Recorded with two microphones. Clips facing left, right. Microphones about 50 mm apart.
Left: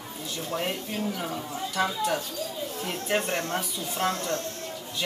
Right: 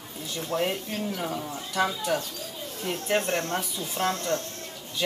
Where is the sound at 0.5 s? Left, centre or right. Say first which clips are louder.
Right 3 dB; centre.